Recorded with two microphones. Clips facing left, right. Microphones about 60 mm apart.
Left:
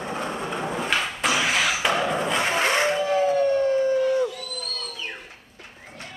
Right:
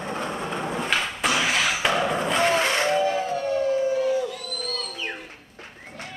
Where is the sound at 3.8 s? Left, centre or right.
Left.